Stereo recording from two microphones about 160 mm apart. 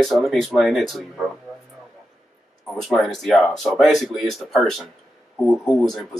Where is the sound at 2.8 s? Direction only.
Centre (ahead or behind).